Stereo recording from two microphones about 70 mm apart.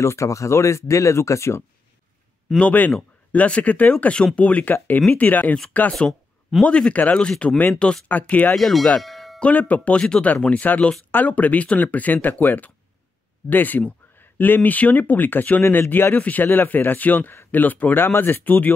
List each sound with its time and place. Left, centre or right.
0.0 s speech: left
2.6 s speech: left
5.9 s a sound: centre
6.6 s speech: centre
8.1 s speech: left
8.5 s speech: centre
9.0 s a sound: centre
9.4 s speech: left